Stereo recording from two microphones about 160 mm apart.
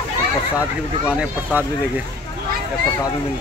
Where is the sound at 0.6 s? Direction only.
10° right (ahead or behind).